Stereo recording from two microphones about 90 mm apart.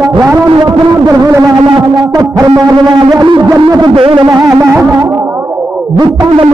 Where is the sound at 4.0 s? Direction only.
80° right.